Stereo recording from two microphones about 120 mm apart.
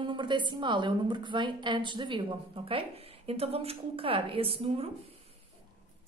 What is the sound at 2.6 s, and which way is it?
A woman's voice, 50° right (ahead or behind).